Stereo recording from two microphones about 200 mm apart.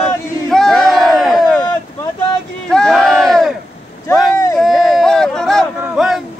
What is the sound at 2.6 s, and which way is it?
Crowd, 5° left (ahead or behind).